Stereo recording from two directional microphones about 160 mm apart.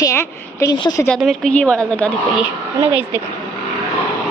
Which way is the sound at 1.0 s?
Centre (ahead or behind).